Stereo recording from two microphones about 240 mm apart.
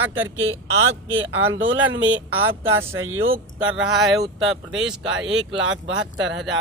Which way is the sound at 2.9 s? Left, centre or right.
Right.